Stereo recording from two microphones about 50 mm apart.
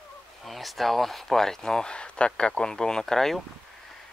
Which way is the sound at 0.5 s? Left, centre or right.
Centre.